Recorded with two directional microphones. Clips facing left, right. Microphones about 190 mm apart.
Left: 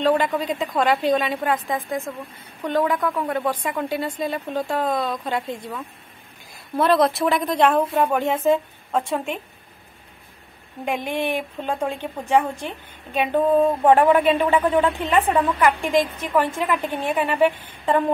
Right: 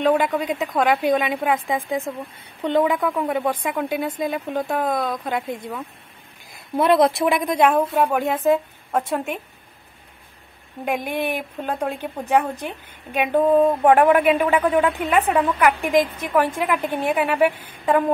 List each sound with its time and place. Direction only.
0.0 s speech: 10° right (ahead or behind)
0.8 s a woman's voice: 15° right (ahead or behind)
7.2 s a woman's voice: 10° right (ahead or behind)
10.9 s a woman's voice: 10° right (ahead or behind)